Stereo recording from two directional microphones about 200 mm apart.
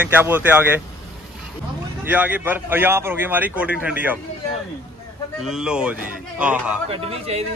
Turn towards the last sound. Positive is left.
turn(degrees=-30)  # may be behind; listen again after turning